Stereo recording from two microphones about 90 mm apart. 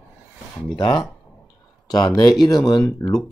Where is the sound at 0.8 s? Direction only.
60° left (ahead or behind).